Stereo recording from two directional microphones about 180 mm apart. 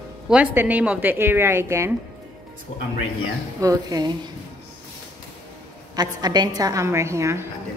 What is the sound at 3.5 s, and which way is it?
Speech, 20° right (ahead or behind).